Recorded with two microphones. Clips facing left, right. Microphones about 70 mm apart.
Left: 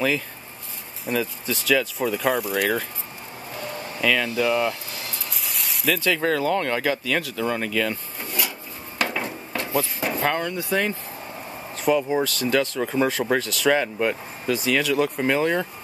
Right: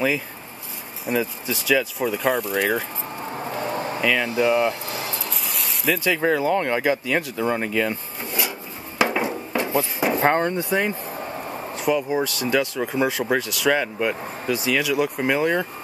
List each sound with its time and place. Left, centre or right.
1.0 s speech: centre
3.5 s a sound: right
4.0 s speech: centre
5.3 s spray: centre
5.9 s a sound: centre
9.7 s drawer open or close: right
10.2 s speech: right
10.7 s speech: centre
11.8 s speech: centre
13.7 s speech: centre